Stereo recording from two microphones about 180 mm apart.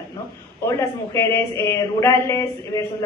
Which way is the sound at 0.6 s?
15° left (ahead or behind).